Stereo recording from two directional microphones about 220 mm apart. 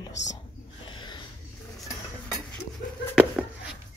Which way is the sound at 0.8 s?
20° left (ahead or behind).